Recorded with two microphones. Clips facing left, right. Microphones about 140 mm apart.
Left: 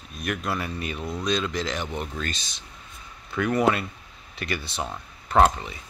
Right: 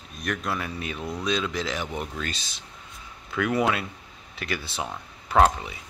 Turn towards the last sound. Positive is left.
turn(degrees=-5)  # may be behind; listen again after turning